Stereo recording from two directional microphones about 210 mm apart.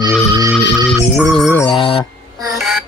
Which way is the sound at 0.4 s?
15° right (ahead or behind).